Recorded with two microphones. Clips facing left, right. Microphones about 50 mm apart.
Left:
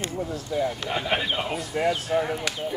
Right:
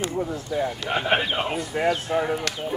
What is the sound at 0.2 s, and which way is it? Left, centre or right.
Speech, right.